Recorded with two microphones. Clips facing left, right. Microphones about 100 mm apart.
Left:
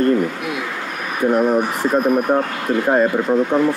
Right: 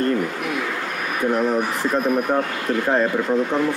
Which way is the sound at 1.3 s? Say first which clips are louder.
Left 5 dB; 15° left (ahead or behind).